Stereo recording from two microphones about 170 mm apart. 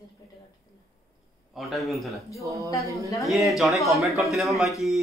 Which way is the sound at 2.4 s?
20° right (ahead or behind).